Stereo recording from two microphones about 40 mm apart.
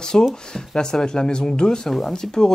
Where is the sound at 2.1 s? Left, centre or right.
Centre.